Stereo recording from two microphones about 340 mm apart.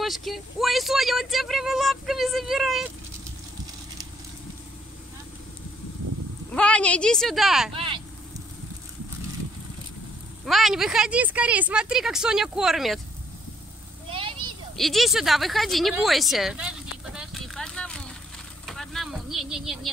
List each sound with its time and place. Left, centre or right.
0.0 s speech: centre
6.5 s speech: centre
7.7 s speech: centre
10.4 s speech: centre
14.0 s a sound: centre
14.8 s speech: centre
17.0 s a sound: centre
18.7 s vehicle: centre